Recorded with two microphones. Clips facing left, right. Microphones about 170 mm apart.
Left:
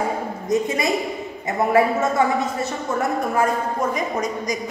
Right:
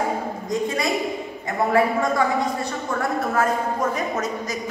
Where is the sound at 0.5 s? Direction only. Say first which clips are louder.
Left 3 dB; 20° left (ahead or behind).